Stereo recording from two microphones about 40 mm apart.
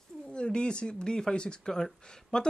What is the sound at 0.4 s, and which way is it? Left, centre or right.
Speech, left.